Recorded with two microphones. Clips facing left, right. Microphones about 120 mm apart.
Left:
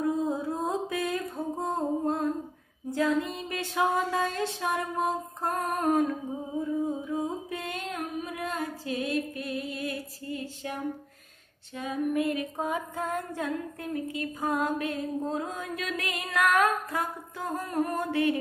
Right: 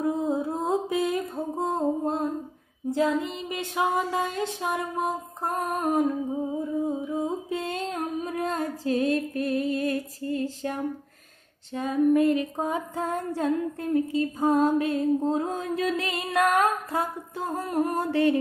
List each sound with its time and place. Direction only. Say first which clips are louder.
0.0 s music: right 2 dB; 20° right (ahead or behind)
2.9 s female singing: right 2 dB; 20° right (ahead or behind)
6.6 s music: right 2 dB; 15° right (ahead or behind); by 10.8 s 40° right (ahead or behind)
11.7 s female singing: right 7 dB; 40° right (ahead or behind)
16.4 s music: even; 30° right (ahead or behind)
17.6 s female singing: right 3 dB; 25° right (ahead or behind)
17.9 s music: right 5 dB; 35° right (ahead or behind)